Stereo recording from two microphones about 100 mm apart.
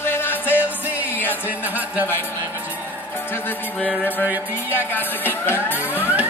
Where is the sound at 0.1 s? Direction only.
20° left (ahead or behind).